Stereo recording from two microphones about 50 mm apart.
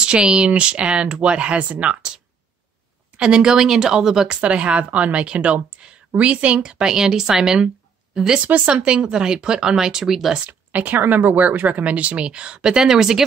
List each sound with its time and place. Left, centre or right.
0.0 s speech: centre
3.2 s speech: centre
4.4 s speech: right; by 10.3 s centre
10.4 s speech: right
10.9 s speech: right; by 13.2 s centre